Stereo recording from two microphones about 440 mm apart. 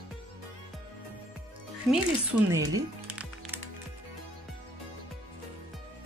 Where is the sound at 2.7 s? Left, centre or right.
Centre.